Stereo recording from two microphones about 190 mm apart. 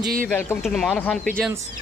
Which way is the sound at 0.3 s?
10° left (ahead or behind).